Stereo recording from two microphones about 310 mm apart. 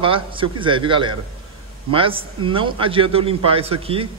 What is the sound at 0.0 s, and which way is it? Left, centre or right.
A man's voice, centre.